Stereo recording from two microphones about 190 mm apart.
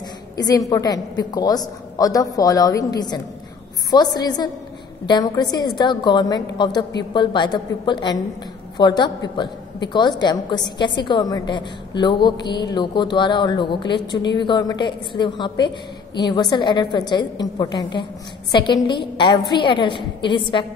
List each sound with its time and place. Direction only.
0.4 s a woman's voice: 20° left (ahead or behind)